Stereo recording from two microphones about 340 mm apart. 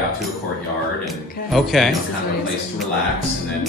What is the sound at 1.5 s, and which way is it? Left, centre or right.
Speech, centre.